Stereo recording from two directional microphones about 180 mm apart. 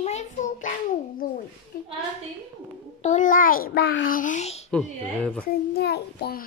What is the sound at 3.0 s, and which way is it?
A child's voice, 45° left (ahead or behind).